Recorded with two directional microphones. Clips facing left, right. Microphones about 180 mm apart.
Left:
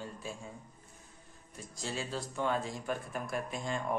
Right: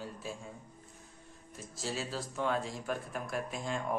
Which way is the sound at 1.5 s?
5° right (ahead or behind).